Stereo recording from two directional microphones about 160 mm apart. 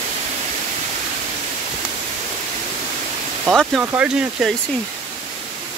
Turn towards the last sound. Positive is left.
turn(degrees=-10)  # may be behind; listen again after turning